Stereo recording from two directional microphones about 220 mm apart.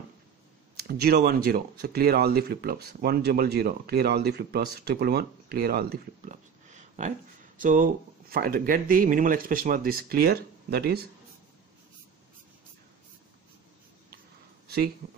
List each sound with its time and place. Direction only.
0.8 s speech: 45° right (ahead or behind)